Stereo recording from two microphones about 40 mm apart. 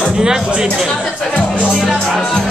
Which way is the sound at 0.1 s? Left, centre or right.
Centre.